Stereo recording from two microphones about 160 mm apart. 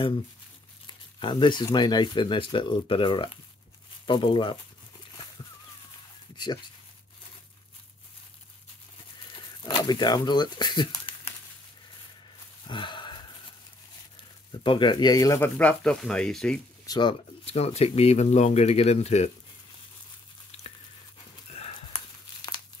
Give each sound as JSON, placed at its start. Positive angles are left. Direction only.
{"t": 0.8, "sound": "speech", "side_deg": 30}
{"t": 6.3, "sound": "speech", "side_deg": 25}
{"t": 9.3, "sound": "crumpling", "side_deg": 35}
{"t": 12.6, "sound": "a sound", "side_deg": 30}
{"t": 14.5, "sound": "speech", "side_deg": 30}
{"t": 16.8, "sound": "speech", "side_deg": 25}
{"t": 20.5, "sound": "a sound", "side_deg": 40}